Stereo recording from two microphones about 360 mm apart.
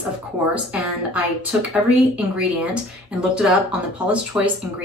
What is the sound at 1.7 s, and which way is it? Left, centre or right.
A woman's voice, centre.